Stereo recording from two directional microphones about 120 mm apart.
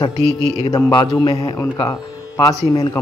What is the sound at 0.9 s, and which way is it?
Speech, 45° left (ahead or behind).